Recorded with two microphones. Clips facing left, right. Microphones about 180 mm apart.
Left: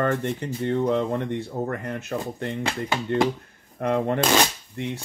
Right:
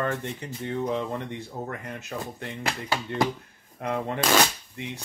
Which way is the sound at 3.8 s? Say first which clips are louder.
Left 6 dB; 50° left (ahead or behind).